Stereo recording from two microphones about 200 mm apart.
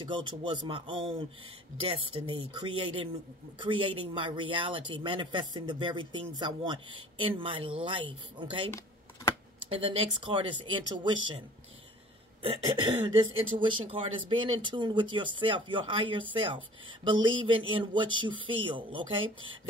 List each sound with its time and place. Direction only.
0.0 s speech: 25° right (ahead or behind)
8.6 s computer keyboard: 15° left (ahead or behind)
9.7 s speech: 25° right (ahead or behind)